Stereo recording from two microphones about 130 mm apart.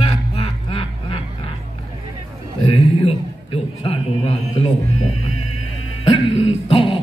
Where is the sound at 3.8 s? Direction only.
50° left (ahead or behind).